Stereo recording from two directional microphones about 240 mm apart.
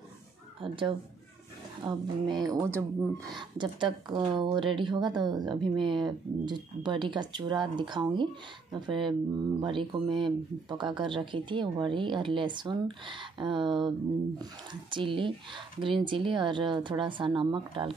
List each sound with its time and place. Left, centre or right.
0.6 s a woman's voice: right